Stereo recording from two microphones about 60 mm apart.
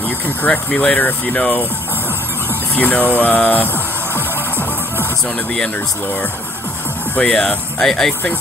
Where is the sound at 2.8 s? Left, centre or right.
Left.